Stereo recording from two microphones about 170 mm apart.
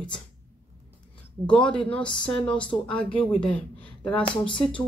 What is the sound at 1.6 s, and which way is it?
Speech, 5° left (ahead or behind).